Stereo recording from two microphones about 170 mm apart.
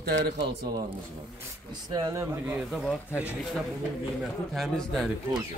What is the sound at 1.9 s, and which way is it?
Speech, 20° right (ahead or behind).